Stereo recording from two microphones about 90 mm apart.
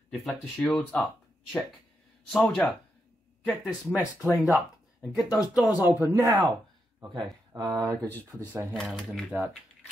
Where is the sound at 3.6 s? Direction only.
10° right (ahead or behind).